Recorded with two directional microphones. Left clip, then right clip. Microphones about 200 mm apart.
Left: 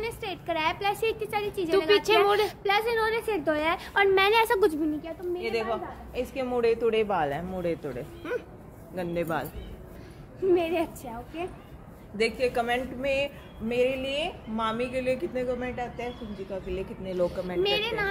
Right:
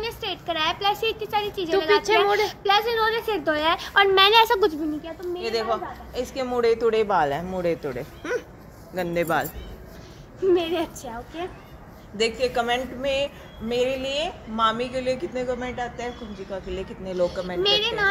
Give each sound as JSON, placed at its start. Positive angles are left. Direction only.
{"t": 0.0, "sound": "speech", "side_deg": 15}
{"t": 2.0, "sound": "a woman's voice", "side_deg": 5}
{"t": 2.4, "sound": "a woman's voice", "side_deg": 15}
{"t": 5.4, "sound": "a woman's voice", "side_deg": -20}
{"t": 10.5, "sound": "a woman's voice", "side_deg": 5}
{"t": 17.6, "sound": "a woman's voice", "side_deg": 15}